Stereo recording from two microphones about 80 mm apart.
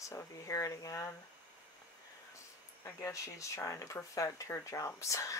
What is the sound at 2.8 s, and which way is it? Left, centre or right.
Speech, left.